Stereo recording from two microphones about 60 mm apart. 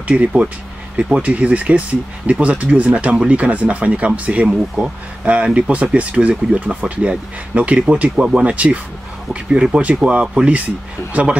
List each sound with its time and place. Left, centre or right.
0.0 s speech: right
1.2 s speech: right